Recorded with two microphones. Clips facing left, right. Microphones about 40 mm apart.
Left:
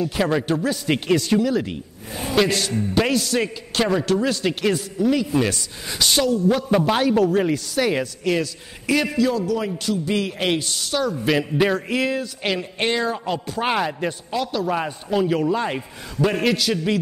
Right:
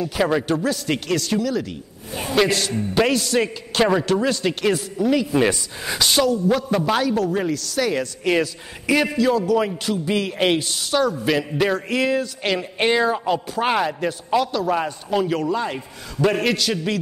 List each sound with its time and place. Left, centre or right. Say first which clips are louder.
0.0 s a man's voice: right 1 dB; centre
2.3 s a man's voice: right 1 dB; centre
7.0 s speech: left 3 dB; centre
8.2 s a man's voice: right 2 dB; centre
15.5 s speech: left 1 dB; centre
16.2 s a man's voice: right 1 dB; centre